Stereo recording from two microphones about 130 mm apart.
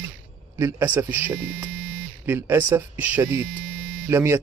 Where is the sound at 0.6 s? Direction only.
20° right (ahead or behind).